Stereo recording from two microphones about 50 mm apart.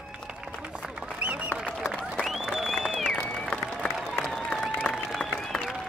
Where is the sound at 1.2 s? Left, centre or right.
Right.